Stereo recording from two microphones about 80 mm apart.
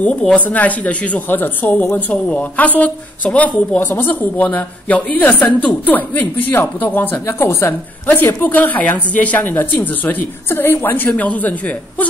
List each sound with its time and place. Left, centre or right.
0.5 s speech: centre
11.1 s speech: centre